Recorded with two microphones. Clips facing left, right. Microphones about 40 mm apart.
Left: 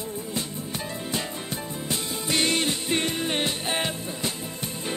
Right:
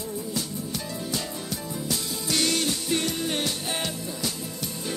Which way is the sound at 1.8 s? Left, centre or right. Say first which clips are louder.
Left 1 dB; left.